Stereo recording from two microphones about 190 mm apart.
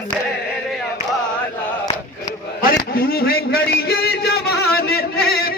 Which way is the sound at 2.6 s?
50° left (ahead or behind).